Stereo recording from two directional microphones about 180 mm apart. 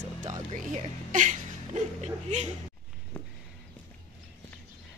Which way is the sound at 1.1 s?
45° right (ahead or behind).